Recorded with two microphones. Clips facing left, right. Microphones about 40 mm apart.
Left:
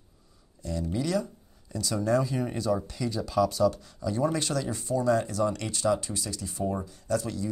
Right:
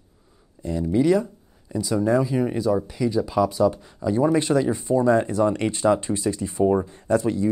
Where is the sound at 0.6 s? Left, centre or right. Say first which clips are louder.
Right 9 dB; right.